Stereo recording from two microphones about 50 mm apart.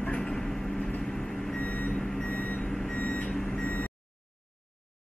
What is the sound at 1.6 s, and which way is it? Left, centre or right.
Reversing beeps, left.